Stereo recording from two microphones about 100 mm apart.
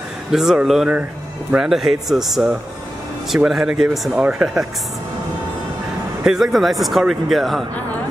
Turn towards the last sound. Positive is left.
turn(degrees=0)  # may be behind; listen again after turning